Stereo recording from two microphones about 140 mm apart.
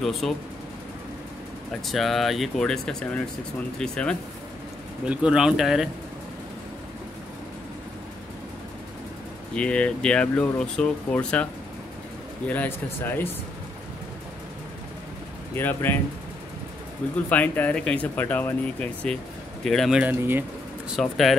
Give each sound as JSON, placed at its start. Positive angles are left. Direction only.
{"t": 0.0, "sound": "speech", "side_deg": 0}
{"t": 1.9, "sound": "speech", "side_deg": 0}
{"t": 5.0, "sound": "speech", "side_deg": -5}
{"t": 9.6, "sound": "speech", "side_deg": 10}
{"t": 12.4, "sound": "speech", "side_deg": 15}
{"t": 15.5, "sound": "speech", "side_deg": 15}
{"t": 17.3, "sound": "speech", "side_deg": 10}
{"t": 20.0, "sound": "speech", "side_deg": -15}
{"t": 20.9, "sound": "speech", "side_deg": 0}